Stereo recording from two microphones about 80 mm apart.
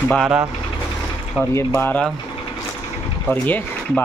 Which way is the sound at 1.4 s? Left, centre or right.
Centre.